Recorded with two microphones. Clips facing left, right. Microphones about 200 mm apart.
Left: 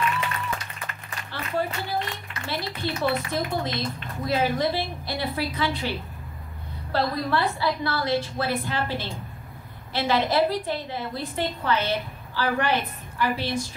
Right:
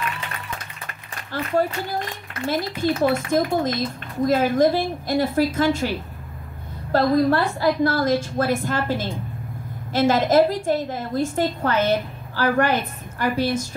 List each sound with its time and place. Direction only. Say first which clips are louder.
1.3 s a woman's voice: right 6 dB; 45° right (ahead or behind)